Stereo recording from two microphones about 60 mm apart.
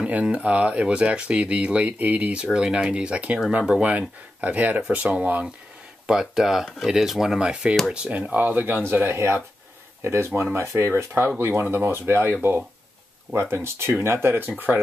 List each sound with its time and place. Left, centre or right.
0.0 s speech: centre
2.4 s speech: centre
5.0 s speech: centre; by 12.6 s right
13.4 s speech: right